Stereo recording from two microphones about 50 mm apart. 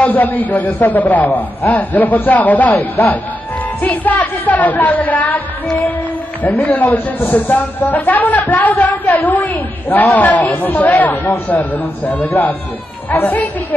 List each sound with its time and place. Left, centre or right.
0.0 s a woman's voice: left
6.4 s a woman's voice: left